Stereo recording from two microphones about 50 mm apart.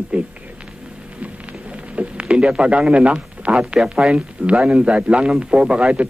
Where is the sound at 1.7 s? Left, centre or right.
Right.